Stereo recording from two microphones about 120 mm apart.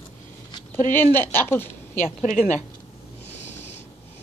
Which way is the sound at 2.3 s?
90° left.